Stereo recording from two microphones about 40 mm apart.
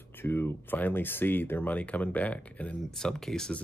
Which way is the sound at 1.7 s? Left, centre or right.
Left.